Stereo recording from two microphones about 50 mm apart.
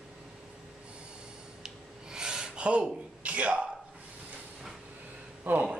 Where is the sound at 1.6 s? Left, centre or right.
Centre.